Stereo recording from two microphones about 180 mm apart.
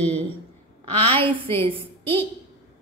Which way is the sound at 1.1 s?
30° right (ahead or behind).